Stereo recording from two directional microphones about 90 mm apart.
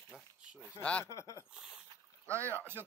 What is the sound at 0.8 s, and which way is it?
Speech, 15° left (ahead or behind).